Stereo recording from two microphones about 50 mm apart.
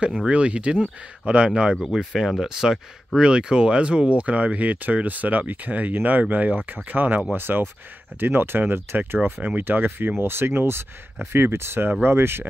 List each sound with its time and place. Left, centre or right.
0.3 s speech: right
1.8 s speech: centre; by 12.4 s right